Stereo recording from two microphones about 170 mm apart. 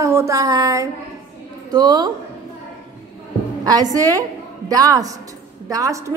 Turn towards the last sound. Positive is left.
turn(degrees=-20)  # may be behind; listen again after turning